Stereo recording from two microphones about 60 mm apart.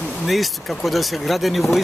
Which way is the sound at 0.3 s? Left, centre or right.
Centre.